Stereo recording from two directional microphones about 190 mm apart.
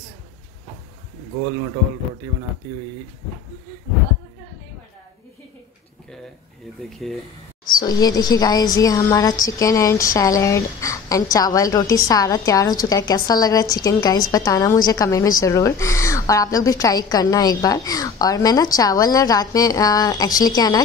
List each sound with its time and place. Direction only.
6.8 s speech: centre (ahead or behind)
7.8 s a woman's voice: 20° left (ahead or behind)